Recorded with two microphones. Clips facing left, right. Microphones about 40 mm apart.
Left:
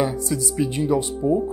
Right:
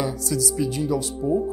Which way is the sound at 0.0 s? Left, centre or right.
Left.